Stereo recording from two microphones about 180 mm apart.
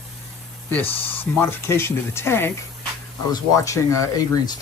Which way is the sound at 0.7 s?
10° left (ahead or behind).